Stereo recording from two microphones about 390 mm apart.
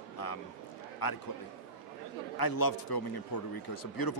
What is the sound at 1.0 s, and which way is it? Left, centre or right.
Speech, left.